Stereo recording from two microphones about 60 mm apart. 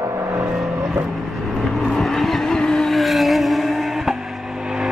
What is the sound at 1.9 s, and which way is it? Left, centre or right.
Vehicle, centre.